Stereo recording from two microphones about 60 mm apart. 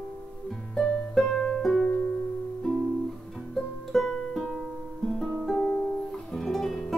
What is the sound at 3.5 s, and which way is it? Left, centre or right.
Music, centre.